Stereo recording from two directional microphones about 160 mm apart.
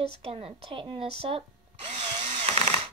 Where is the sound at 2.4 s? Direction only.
40° right (ahead or behind).